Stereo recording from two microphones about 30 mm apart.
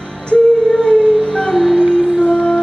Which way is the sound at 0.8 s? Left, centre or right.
Left.